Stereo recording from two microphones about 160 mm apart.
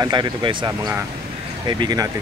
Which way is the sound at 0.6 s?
20° right (ahead or behind).